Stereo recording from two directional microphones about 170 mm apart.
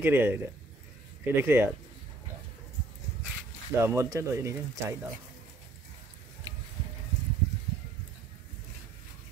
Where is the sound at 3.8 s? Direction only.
15° right (ahead or behind).